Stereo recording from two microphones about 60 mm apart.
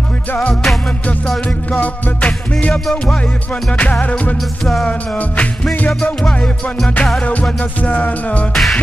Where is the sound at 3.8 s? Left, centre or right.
Left.